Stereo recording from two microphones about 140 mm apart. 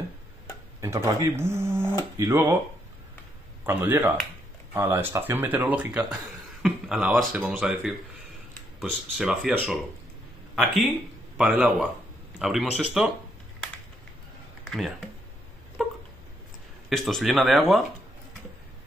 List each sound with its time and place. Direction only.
0.7 s speech: 20° right (ahead or behind)
3.6 s speech: 20° right (ahead or behind)
14.7 s speech: centre (ahead or behind)
16.9 s speech: centre (ahead or behind)